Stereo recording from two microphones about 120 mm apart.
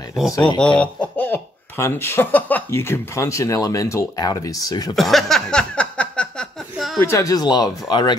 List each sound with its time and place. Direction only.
0.6 s speech: 10° left (ahead or behind); by 4.9 s 30° left (ahead or behind)
4.9 s a sound: centre (ahead or behind)
7.0 s speech: 25° left (ahead or behind)